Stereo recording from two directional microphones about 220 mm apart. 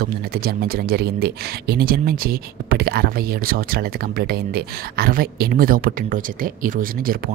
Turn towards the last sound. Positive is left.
turn(degrees=-40)  # may be behind; listen again after turning